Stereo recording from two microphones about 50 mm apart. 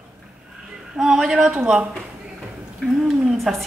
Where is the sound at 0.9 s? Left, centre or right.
Centre.